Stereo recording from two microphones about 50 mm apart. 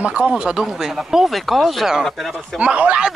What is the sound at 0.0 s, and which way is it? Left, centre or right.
A woman's voice, right.